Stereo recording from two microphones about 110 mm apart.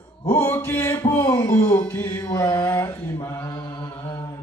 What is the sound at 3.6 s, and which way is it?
Mantra, 40° left (ahead or behind).